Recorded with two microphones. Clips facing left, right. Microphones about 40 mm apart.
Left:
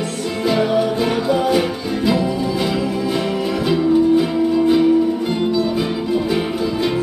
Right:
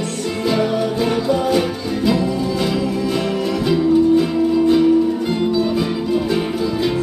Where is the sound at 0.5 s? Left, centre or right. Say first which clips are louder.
Left 2 dB; centre.